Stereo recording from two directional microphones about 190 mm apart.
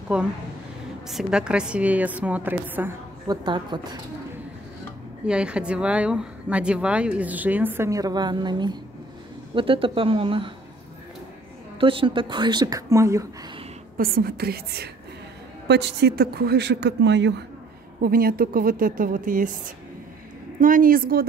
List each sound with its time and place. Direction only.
0.1 s speech: 5° right (ahead or behind)
3.3 s speech: 25° right (ahead or behind)
5.2 s speech: 5° right (ahead or behind); by 10.5 s 30° right (ahead or behind)
11.8 s speech: 25° right (ahead or behind)
13.9 s speech: 50° right (ahead or behind)
18.0 s speech: 50° right (ahead or behind)